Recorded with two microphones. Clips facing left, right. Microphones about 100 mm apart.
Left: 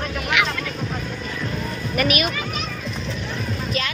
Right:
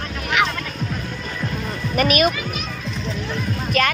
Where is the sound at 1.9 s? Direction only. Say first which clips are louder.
Right 4 dB; 40° right (ahead or behind).